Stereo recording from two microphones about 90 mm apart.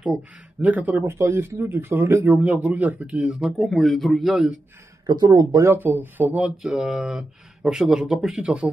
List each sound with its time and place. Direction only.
0.0 s speech: 15° right (ahead or behind)
1.1 s a man's voice: 30° right (ahead or behind); by 4.6 s centre (ahead or behind)
5.0 s speech: 45° right (ahead or behind)
5.7 s a man's voice: 20° right (ahead or behind)